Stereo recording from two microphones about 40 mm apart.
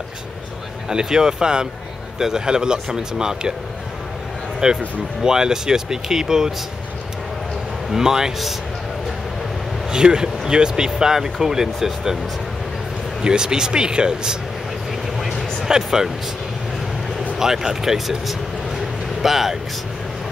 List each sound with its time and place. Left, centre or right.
0.8 s speech: centre
4.6 s speech: centre
7.9 s speech: centre
9.8 s speech: centre
13.2 s speech: centre
15.6 s speech: centre
17.4 s speech: centre